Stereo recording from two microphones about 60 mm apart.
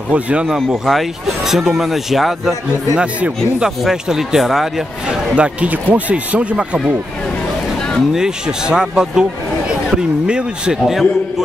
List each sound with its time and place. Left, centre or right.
0.1 s speech: right
0.5 s speech: centre
3.0 s a man's voice: centre
5.3 s speech: right
8.1 s a man's voice: centre